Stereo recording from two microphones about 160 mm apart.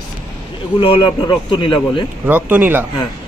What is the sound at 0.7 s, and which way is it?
A man's voice, 35° left (ahead or behind).